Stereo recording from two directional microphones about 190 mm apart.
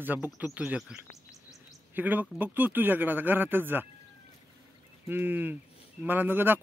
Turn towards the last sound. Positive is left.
turn(degrees=-10)  # may be behind; listen again after turning